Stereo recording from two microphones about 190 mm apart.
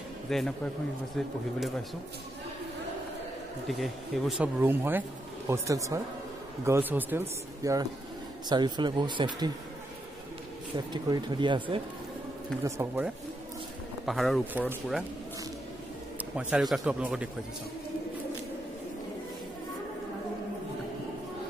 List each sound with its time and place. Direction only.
0.3 s speech: centre (ahead or behind)
3.6 s speech: centre (ahead or behind); by 9.5 s 25° right (ahead or behind)
10.9 s speech: 25° right (ahead or behind)
12.6 s speech: 10° right (ahead or behind)
14.0 s speech: centre (ahead or behind)
16.3 s speech: 5° right (ahead or behind)